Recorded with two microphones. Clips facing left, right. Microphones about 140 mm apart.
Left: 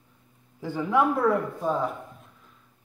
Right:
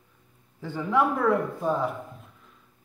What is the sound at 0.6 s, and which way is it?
Speech, 10° left (ahead or behind).